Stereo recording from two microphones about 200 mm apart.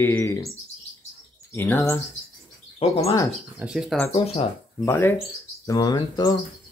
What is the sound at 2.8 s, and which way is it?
Speech, 30° left (ahead or behind).